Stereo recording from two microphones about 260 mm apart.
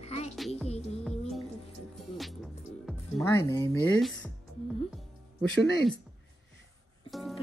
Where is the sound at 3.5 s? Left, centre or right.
Centre.